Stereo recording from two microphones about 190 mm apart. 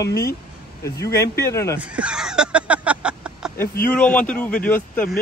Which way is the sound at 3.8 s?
5° left (ahead or behind).